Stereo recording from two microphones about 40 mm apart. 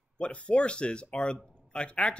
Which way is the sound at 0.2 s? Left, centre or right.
Left.